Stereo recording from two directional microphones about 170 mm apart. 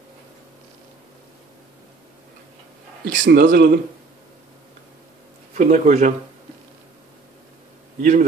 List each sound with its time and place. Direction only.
3.1 s speech: 75° right (ahead or behind)
3.5 s speech: 65° right (ahead or behind)
5.5 s a man's voice: 45° right (ahead or behind)
8.0 s a man's voice: 45° right (ahead or behind)